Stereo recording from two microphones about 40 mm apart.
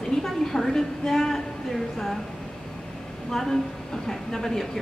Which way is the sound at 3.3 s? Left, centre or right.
Centre.